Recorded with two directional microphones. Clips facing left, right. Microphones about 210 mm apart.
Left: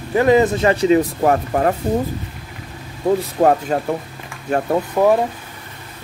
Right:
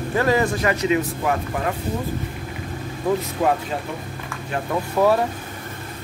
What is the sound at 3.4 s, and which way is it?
Speech, 45° left (ahead or behind).